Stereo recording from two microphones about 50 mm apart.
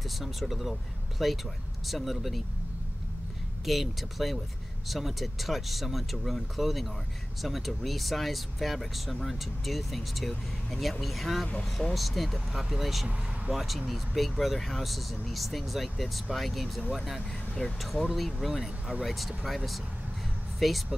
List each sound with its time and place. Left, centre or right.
0.2 s speech: centre
3.6 s speech: centre
17.6 s speech: left
18.1 s speech: centre